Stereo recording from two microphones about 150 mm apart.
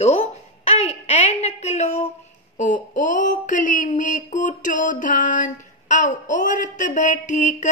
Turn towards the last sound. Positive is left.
turn(degrees=55)  # may be behind; listen again after turning